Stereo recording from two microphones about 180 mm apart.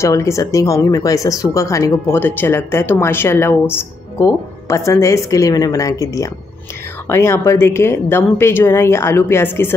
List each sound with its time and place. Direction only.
0.0 s speech: 15° left (ahead or behind)